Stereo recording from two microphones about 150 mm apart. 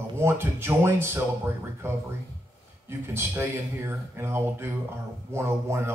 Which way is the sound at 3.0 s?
15° right (ahead or behind).